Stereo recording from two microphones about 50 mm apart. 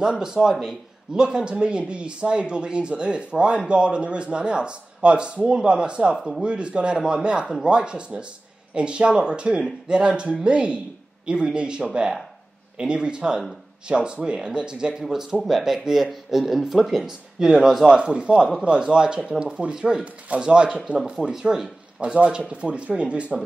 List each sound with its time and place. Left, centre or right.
0.0 s a man's voice: centre
15.4 s a man's voice: centre
22.0 s a man's voice: right